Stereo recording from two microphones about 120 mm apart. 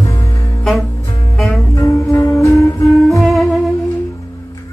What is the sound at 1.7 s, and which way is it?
Music, 30° left (ahead or behind).